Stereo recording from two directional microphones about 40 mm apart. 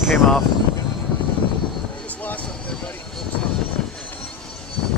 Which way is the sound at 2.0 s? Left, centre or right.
Left.